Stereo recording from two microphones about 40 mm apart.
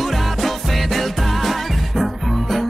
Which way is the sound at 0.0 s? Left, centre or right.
Centre.